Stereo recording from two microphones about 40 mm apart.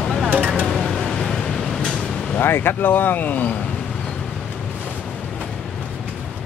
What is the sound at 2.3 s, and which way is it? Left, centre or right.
Speech, left.